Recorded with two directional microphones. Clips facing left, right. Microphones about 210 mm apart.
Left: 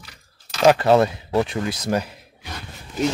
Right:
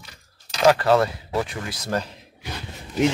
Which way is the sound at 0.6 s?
20° left (ahead or behind).